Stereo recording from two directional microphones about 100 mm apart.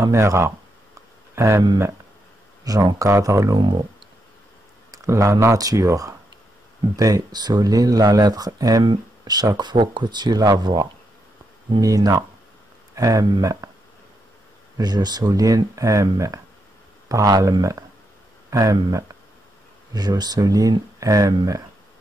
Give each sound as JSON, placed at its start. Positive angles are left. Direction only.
{"t": 0.0, "sound": "speech", "side_deg": -30}
{"t": 2.6, "sound": "speech", "side_deg": -40}
{"t": 4.9, "sound": "speech", "side_deg": -30}
{"t": 14.8, "sound": "speech", "side_deg": -45}